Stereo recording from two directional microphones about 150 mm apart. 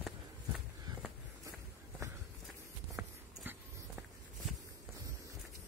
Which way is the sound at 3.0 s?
10° right (ahead or behind).